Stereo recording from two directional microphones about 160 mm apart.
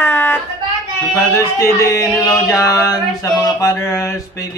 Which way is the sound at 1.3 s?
20° left (ahead or behind).